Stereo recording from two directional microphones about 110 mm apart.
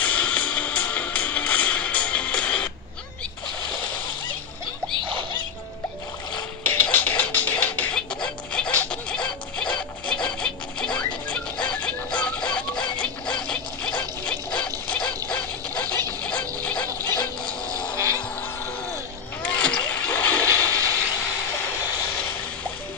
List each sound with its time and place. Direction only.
0.0 s music: 15° left (ahead or behind)
6.6 s music: 20° left (ahead or behind)
16.6 s dog: 10° left (ahead or behind)
19.4 s vehicle: 10° left (ahead or behind)
20.4 s a sound: 30° right (ahead or behind)